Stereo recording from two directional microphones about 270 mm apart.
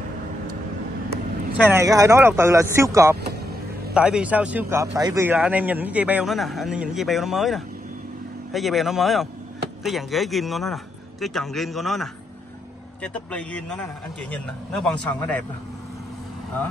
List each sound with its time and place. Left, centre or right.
1.6 s speech: centre
3.2 s vehicle: right
3.9 s speech: centre